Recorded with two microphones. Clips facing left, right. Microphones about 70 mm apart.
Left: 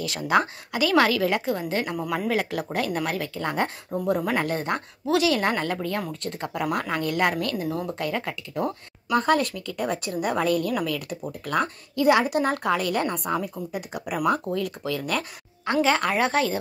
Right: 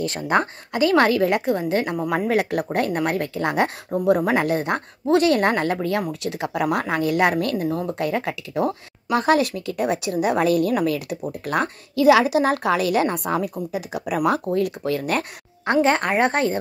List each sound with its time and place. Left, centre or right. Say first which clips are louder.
0.0 s a woman's voice: right 1 dB; right
10.7 s speech: right 5 dB; right
11.4 s a woman's voice: right 1 dB; right
13.7 s speech: right 5 dB; right